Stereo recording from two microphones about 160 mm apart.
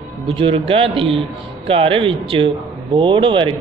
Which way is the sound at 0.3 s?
35° right (ahead or behind).